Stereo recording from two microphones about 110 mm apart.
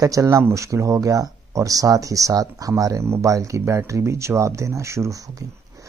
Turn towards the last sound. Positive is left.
turn(degrees=-30)  # may be behind; listen again after turning